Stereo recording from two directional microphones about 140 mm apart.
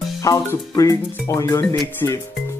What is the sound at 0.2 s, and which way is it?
Speech, 25° left (ahead or behind).